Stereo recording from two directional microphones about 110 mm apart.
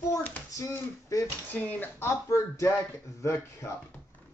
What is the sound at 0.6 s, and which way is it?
Speech, 20° left (ahead or behind).